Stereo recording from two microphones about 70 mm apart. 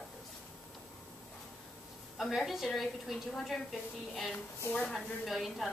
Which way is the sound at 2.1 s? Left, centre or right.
Centre.